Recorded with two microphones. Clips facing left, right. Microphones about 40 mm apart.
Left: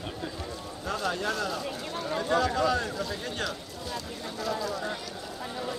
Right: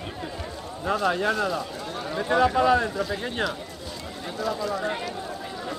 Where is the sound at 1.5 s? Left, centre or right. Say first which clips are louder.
Right 3 dB; centre.